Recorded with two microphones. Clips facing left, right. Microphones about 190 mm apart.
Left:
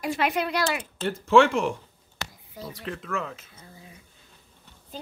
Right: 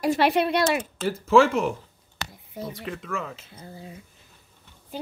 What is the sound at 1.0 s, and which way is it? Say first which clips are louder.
Speech: even; centre (ahead or behind).